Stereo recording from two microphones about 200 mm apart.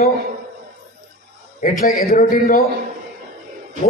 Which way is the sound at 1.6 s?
45° left (ahead or behind).